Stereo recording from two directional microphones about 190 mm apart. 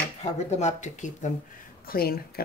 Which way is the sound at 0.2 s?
35° left (ahead or behind).